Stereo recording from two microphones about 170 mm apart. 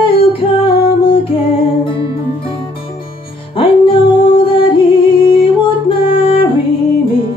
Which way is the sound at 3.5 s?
30° left (ahead or behind).